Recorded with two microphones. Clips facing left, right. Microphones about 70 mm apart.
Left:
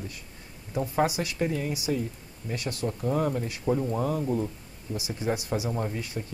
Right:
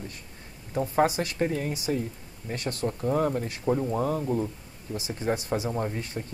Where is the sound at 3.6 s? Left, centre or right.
Centre.